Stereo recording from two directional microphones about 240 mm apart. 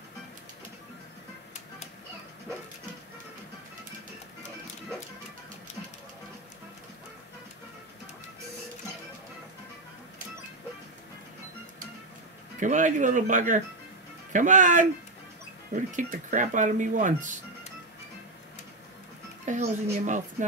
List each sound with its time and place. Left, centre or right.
12.5 s speech: right
19.4 s speech: right